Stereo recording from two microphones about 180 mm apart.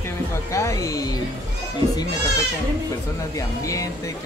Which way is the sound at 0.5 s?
15° left (ahead or behind).